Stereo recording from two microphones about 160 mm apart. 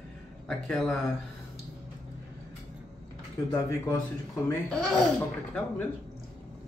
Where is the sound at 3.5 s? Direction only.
15° left (ahead or behind).